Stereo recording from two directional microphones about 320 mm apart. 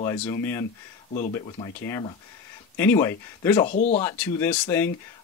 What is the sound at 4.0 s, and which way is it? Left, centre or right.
Speech, centre.